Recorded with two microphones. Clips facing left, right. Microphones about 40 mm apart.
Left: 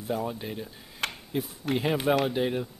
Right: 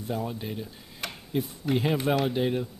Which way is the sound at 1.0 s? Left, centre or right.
Left.